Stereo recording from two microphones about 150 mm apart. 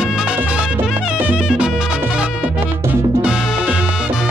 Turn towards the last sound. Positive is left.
turn(degrees=-5)  # may be behind; listen again after turning